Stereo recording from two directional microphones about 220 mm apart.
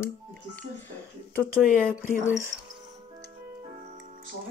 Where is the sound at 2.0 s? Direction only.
35° left (ahead or behind).